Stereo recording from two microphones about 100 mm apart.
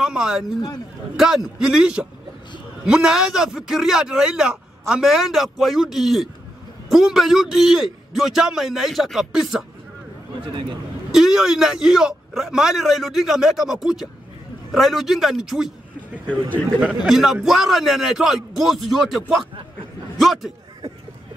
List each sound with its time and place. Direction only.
0.0 s a man's voice: 5° right (ahead or behind)
11.1 s a man's voice: 5° right (ahead or behind)
16.3 s a man's voice: 15° left (ahead or behind)
16.8 s a man's voice: 5° right (ahead or behind)